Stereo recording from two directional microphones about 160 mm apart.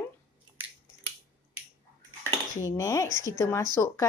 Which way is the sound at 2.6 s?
20° left (ahead or behind).